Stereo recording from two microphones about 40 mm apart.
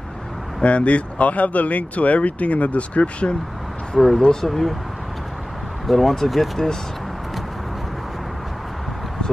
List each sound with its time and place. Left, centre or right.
0.6 s speech: left
3.9 s speech: centre
5.9 s speech: centre